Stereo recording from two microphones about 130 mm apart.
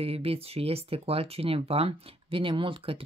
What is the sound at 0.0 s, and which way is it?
Speech, 50° right (ahead or behind).